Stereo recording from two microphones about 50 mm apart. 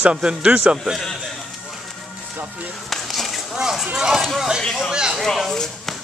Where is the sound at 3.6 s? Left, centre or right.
Centre.